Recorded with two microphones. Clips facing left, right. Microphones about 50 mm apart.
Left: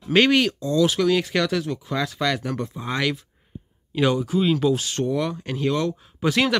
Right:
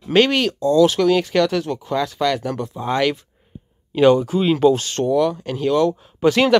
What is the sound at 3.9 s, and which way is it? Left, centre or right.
Speech, centre.